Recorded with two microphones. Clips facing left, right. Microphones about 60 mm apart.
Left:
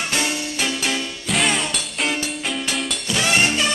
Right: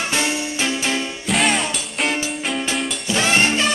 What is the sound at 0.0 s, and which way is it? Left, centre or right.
Music, centre.